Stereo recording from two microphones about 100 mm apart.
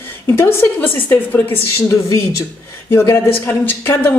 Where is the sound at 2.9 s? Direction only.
30° left (ahead or behind).